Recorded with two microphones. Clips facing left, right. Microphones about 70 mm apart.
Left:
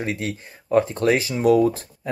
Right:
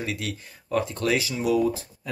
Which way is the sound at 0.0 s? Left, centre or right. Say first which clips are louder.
Left 4 dB; left.